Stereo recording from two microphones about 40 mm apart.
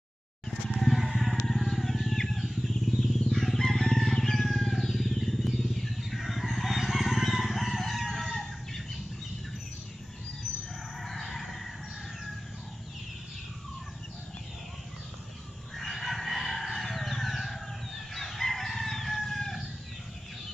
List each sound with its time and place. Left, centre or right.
0.7 s a sound: centre
1.3 s vehicle: centre
3.2 s crowing: centre
11.0 s crow: centre
15.8 s chicken: centre